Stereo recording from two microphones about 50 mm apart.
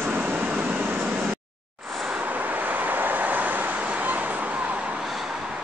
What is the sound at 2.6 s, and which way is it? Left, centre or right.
Vehicle, right.